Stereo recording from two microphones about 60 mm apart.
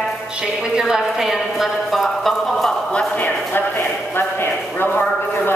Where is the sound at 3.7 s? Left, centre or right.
Left.